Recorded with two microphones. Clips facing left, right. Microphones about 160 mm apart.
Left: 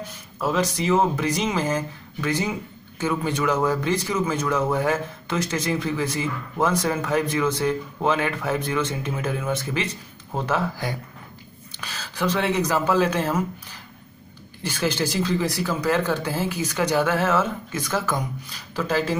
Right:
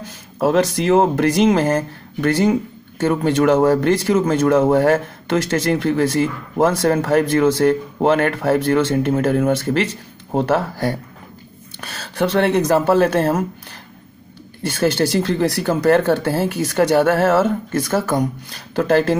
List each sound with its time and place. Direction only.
0.5 s speech: 70° right (ahead or behind)
3.0 s speech: 60° right (ahead or behind); by 6.2 s 75° right (ahead or behind)
6.8 s speech: 60° right (ahead or behind)
11.8 s speech: 45° right (ahead or behind)
12.2 s speech: 65° right (ahead or behind)
14.7 s speech: 60° right (ahead or behind)
17.8 s speech: 50° right (ahead or behind)
18.5 s speech: 65° right (ahead or behind)